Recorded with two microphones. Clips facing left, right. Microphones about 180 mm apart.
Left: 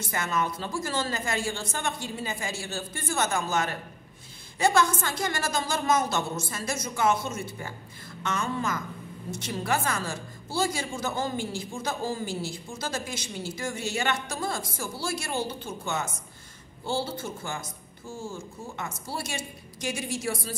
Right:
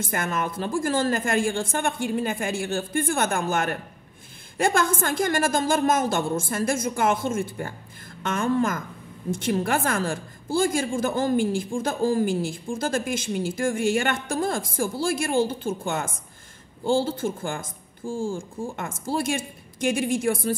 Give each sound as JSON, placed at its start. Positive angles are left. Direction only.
{"t": 0.0, "sound": "a woman's voice", "side_deg": -50}
{"t": 18.0, "sound": "speech", "side_deg": -90}
{"t": 18.3, "sound": "a woman's voice", "side_deg": -50}